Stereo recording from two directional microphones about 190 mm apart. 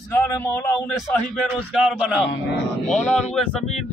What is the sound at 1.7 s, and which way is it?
Speech, 5° right (ahead or behind).